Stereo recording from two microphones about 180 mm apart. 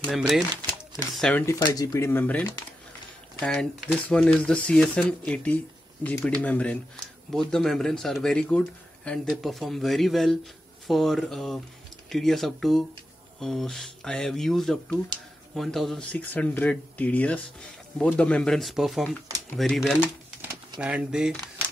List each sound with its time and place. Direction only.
0.0 s speech: centre (ahead or behind)
1.4 s speech: 15° left (ahead or behind); by 21.4 s 5° right (ahead or behind)